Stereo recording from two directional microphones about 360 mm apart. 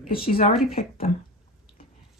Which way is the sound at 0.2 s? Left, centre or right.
Centre.